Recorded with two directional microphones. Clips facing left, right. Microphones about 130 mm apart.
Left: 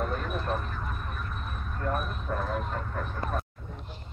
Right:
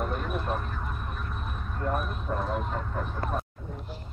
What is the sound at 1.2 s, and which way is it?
Speech, 15° right (ahead or behind).